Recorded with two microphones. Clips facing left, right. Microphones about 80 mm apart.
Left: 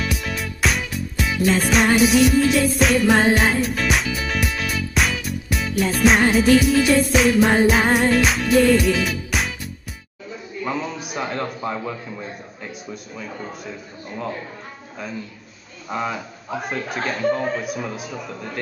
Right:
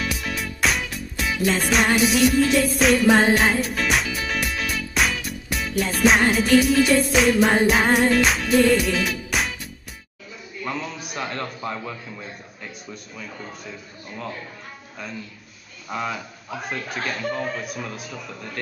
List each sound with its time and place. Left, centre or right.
0.0 s music: centre
10.6 s a man's voice: centre
15.9 s a man's voice: centre
17.3 s a man's voice: left
17.6 s a man's voice: centre